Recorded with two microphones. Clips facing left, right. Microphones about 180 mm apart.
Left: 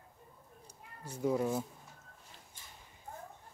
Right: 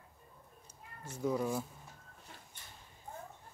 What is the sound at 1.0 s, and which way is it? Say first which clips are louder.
Speech: left 2 dB; 10° left (ahead or behind).